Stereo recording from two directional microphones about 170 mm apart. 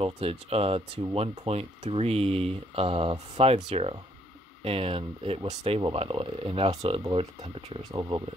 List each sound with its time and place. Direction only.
0.0 s speech: 35° right (ahead or behind)